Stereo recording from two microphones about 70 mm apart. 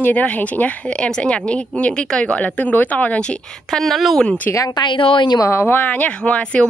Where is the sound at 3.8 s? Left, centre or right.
Centre.